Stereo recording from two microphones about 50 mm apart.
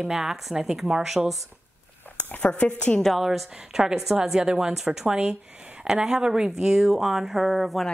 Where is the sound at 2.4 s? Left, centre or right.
Left.